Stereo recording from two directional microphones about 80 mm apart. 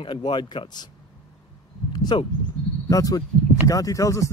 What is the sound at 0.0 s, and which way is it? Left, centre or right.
Speech, left.